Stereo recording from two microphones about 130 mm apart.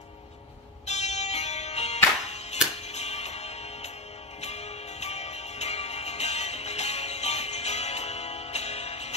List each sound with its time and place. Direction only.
0.8 s music: 60° left (ahead or behind)